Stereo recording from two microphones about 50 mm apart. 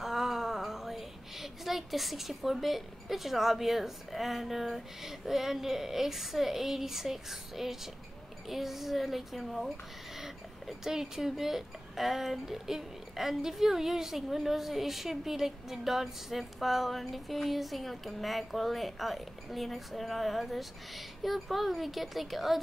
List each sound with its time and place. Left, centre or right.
0.0 s a woman's voice: centre
10.8 s speech: centre